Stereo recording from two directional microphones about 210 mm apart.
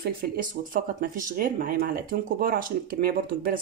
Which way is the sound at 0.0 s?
40° right (ahead or behind).